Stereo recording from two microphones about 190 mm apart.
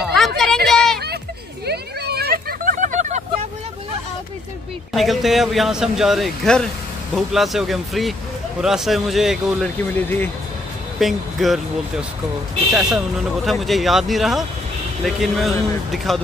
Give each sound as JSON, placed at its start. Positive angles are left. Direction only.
{"t": 0.0, "sound": "a sound", "side_deg": 0}
{"t": 0.9, "sound": "a sound", "side_deg": -55}
{"t": 1.7, "sound": "vehicle", "side_deg": -60}
{"t": 4.9, "sound": "speech", "side_deg": 0}
{"t": 10.0, "sound": "speech", "side_deg": 10}
{"t": 11.0, "sound": "speech", "side_deg": 0}
{"t": 12.7, "sound": "speech", "side_deg": 0}